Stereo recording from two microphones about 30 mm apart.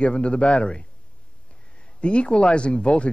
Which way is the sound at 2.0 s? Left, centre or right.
Left.